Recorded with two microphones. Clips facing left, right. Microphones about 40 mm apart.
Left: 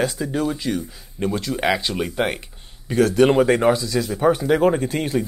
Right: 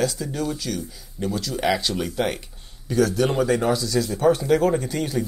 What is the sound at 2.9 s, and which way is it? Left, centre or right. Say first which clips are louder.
Speech: left 5 dB; left.